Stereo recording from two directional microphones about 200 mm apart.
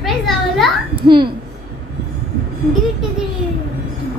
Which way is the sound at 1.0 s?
25° right (ahead or behind).